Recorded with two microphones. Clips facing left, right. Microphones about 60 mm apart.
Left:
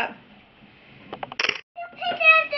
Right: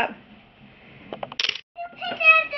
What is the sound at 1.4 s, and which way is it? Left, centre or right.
Cat, left.